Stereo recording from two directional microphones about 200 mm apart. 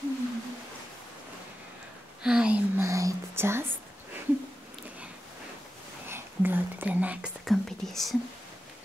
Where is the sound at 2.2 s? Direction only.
5° right (ahead or behind).